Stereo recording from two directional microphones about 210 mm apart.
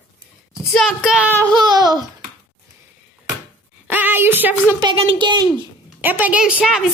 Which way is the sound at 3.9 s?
10° right (ahead or behind).